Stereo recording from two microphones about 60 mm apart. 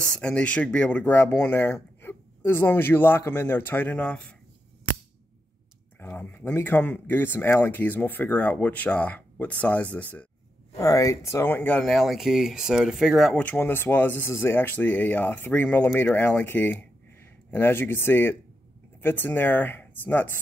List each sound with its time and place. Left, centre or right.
0.1 s speech: centre
4.1 s speech: centre
5.9 s speech: left
10.8 s speech: left
11.4 s speech: left
11.8 s speech: centre
13.4 s speech: left
13.7 s speech: left
14.2 s speech: left